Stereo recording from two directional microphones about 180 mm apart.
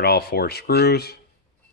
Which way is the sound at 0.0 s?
65° left (ahead or behind).